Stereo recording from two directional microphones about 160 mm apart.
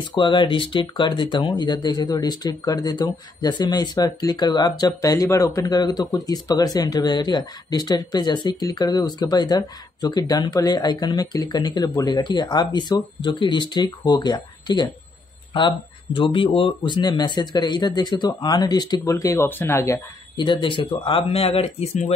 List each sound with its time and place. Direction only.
0.1 s speech: 30° left (ahead or behind)
16.2 s speech: 35° left (ahead or behind); by 20.0 s 15° left (ahead or behind)
20.3 s speech: 30° left (ahead or behind)